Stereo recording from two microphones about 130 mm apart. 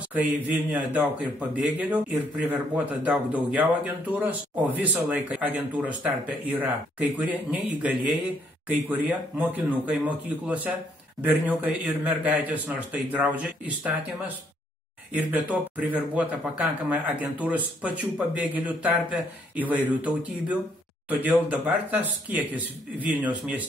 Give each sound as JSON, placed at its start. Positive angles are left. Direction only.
{"t": 0.1, "sound": "speech", "side_deg": -10}
{"t": 15.3, "sound": "speech", "side_deg": -10}
{"t": 21.1, "sound": "speech", "side_deg": -10}